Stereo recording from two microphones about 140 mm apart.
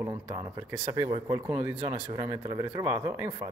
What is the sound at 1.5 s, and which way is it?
Speech, 15° right (ahead or behind).